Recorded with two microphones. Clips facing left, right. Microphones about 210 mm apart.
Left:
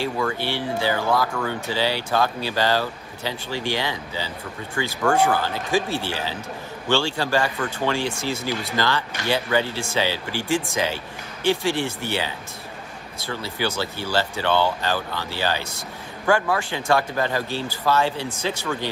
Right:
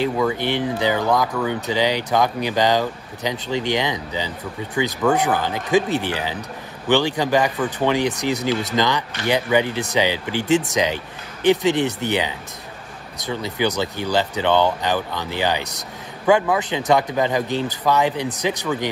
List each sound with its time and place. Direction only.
0.3 s speech: 20° right (ahead or behind)